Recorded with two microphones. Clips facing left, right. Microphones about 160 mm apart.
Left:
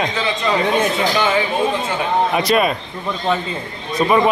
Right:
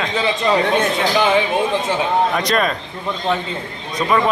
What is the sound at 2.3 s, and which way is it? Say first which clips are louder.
Speech: left 2 dB; 10° left (ahead or behind).